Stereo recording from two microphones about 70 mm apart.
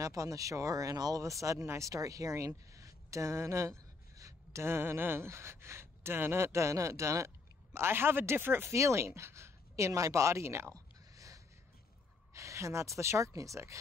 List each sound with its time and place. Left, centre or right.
0.0 s speech: right
8.6 s a woman's voice: right
10.7 s a sound: right
12.4 s a woman's voice: right